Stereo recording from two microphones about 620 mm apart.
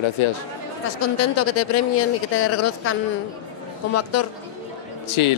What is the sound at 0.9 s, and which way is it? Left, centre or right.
Speech, left.